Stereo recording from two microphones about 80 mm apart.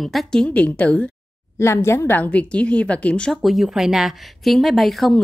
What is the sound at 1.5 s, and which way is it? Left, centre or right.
A woman's voice, left.